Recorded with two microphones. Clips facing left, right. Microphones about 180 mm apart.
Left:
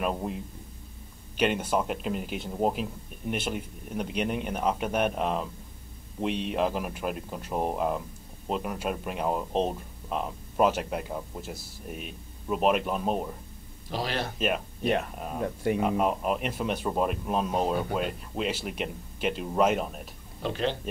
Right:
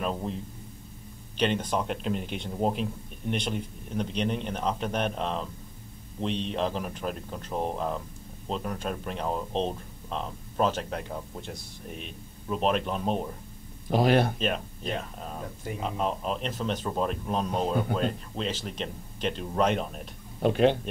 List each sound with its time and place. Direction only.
0.0 s speech: 10° left (ahead or behind)
13.8 s speech: 55° right (ahead or behind)
14.4 s speech: 5° left (ahead or behind)
15.4 s speech: 70° left (ahead or behind)
15.8 s speech: 10° left (ahead or behind)
20.4 s speech: 55° right (ahead or behind)